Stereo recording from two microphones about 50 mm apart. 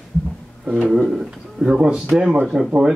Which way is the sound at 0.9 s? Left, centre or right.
Centre.